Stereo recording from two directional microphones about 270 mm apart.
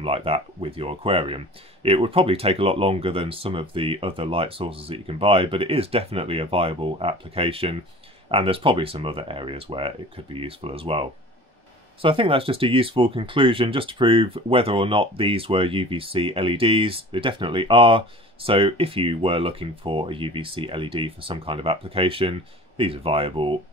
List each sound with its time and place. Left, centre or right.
0.0 s speech: right